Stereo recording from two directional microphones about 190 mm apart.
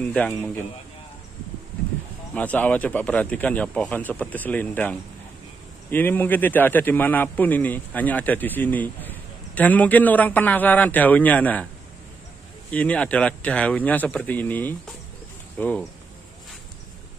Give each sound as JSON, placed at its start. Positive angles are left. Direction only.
{"t": 0.1, "sound": "a man's voice", "side_deg": 5}
{"t": 2.3, "sound": "a man's voice", "side_deg": 10}
{"t": 12.7, "sound": "a man's voice", "side_deg": 5}